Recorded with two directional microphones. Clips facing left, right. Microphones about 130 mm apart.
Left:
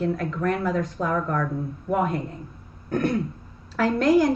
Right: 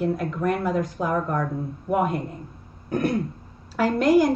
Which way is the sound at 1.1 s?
25° right (ahead or behind).